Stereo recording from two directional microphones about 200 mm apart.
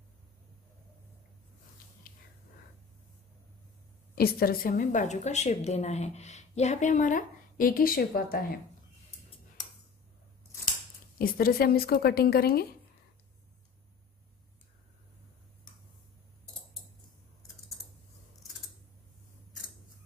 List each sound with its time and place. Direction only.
2.1 s whispering: 45° left (ahead or behind)
4.1 s a woman's voice: 50° left (ahead or behind)
11.1 s a woman's voice: 45° left (ahead or behind)